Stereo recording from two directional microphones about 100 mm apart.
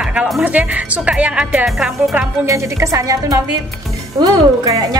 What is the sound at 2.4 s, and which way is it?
A woman's voice, 30° right (ahead or behind).